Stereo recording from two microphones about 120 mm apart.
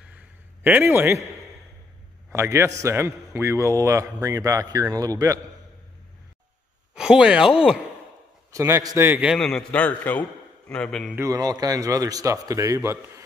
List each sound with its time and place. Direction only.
0.0 s a sound: 10° right (ahead or behind)
2.3 s a man's voice: 25° right (ahead or behind)
7.0 s speech: 5° right (ahead or behind)
8.5 s a man's voice: 25° right (ahead or behind)
9.3 s a man's voice: 5° left (ahead or behind)
11.1 s a man's voice: 30° right (ahead or behind)